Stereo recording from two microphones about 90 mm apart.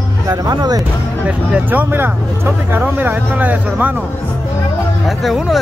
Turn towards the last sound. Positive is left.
turn(degrees=0)  # may be behind; listen again after turning